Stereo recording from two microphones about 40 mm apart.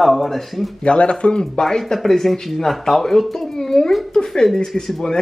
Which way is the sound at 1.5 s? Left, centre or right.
Centre.